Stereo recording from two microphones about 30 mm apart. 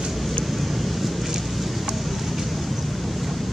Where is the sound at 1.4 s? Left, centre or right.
Centre.